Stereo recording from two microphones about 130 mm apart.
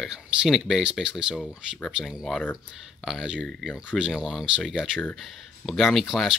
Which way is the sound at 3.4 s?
5° left (ahead or behind).